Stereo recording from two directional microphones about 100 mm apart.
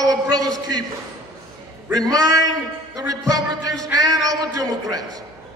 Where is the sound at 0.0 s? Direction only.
40° right (ahead or behind).